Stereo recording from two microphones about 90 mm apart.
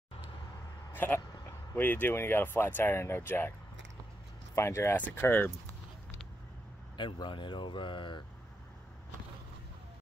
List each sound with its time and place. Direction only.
0.9 s speech: 20° left (ahead or behind)
4.6 s speech: 30° left (ahead or behind)
7.0 s speech: 60° left (ahead or behind)